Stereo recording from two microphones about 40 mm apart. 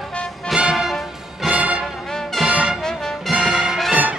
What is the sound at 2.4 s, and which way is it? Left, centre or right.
Music, centre.